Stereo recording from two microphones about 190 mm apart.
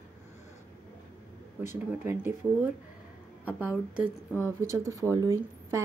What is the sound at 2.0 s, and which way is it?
A woman's voice, 10° right (ahead or behind).